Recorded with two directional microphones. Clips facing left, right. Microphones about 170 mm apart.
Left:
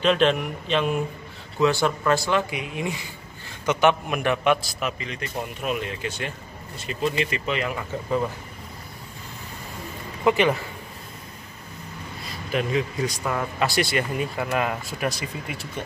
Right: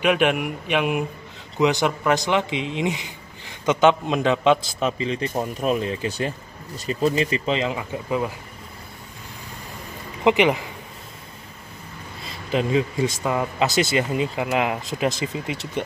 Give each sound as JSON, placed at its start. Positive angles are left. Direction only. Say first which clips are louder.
{"t": 0.0, "sound": "a man's voice", "louder": "even", "side_deg": -10}
{"t": 7.7, "sound": "speech", "louder": "right 1 dB", "side_deg": -10}
{"t": 10.2, "sound": "speech", "louder": "right 2 dB", "side_deg": -15}
{"t": 12.3, "sound": "a man's voice", "louder": "right 3 dB", "side_deg": -25}